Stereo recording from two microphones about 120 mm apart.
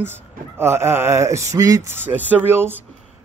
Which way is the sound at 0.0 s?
20° right (ahead or behind).